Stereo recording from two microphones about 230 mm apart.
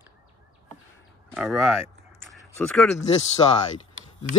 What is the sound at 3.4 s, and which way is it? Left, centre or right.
Speech, left.